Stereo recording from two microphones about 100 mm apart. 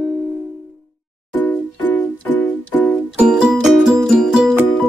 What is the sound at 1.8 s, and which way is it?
Keyboard, 15° left (ahead or behind).